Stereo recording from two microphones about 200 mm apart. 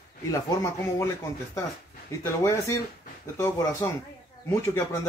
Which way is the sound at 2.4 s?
15° left (ahead or behind).